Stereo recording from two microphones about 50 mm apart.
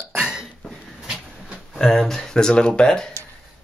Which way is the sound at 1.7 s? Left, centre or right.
Centre.